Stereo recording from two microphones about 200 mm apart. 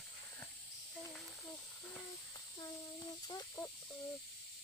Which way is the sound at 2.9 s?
20° left (ahead or behind).